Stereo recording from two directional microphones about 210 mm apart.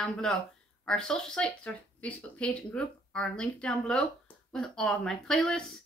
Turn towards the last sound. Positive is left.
turn(degrees=5)  # may be behind; listen again after turning